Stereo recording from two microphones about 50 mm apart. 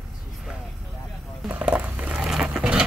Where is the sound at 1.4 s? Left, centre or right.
Right.